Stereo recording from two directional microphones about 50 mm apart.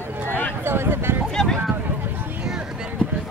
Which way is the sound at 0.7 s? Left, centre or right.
Right.